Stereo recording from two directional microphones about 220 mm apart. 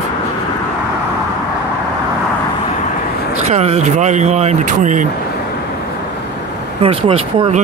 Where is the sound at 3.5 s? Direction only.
30° right (ahead or behind).